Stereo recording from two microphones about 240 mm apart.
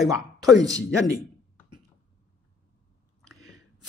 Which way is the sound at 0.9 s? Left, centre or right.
Centre.